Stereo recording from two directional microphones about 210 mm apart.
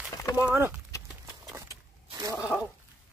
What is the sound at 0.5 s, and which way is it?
Speech, 10° right (ahead or behind).